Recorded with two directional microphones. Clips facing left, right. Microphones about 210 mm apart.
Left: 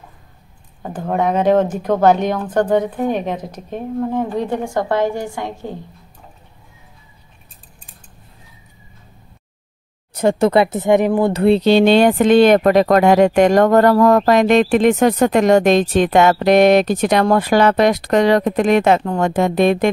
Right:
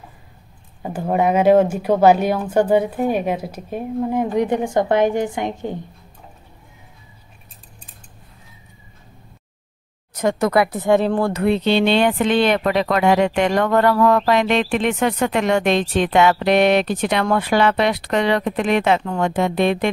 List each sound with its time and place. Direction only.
0.8 s speech: 10° right (ahead or behind)
10.1 s speech: 30° left (ahead or behind)
11.3 s speech: 30° left (ahead or behind)